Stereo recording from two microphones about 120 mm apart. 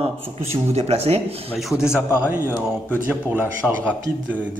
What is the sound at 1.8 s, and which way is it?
Speech, 20° left (ahead or behind).